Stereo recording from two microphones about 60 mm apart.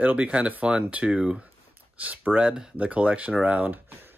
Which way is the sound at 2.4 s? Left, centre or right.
Centre.